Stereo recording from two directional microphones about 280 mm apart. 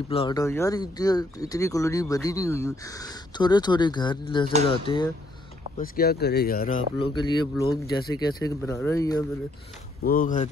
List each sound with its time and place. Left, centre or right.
0.1 s speech: centre
5.8 s speech: left
7.0 s speech: centre
10.0 s speech: left